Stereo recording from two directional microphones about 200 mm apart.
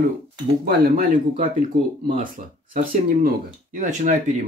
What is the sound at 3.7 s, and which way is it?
Speech, 40° right (ahead or behind).